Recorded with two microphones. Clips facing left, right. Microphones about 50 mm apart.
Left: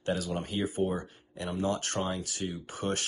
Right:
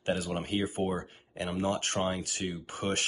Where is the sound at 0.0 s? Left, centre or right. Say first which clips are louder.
Even; right.